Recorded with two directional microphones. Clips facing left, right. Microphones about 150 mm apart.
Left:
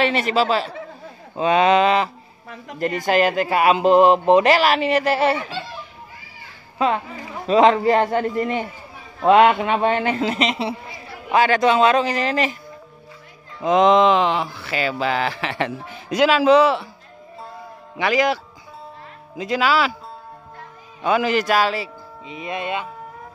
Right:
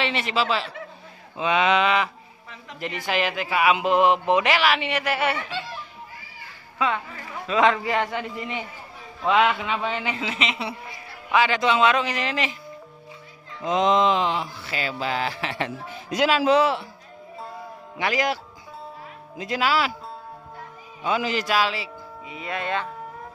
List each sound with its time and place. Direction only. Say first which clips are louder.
0.0 s a man's voice: left 6 dB; 45° left (ahead or behind)
2.4 s speech: left 9 dB; 50° left (ahead or behind); by 5.6 s 35° left (ahead or behind)
7.4 s a man's voice: left 6 dB; 35° left (ahead or behind)
11.3 s speech: left 4 dB; 45° left (ahead or behind)
13.6 s music: left 6 dB; 60° left (ahead or behind); by 16.8 s 85° left
17.9 s speech: left 5 dB; 90° left
21.0 s a man's voice: left 6 dB; 60° left (ahead or behind); by 21.9 s 45° left (ahead or behind)
22.3 s speech: left 2 dB; 20° left (ahead or behind)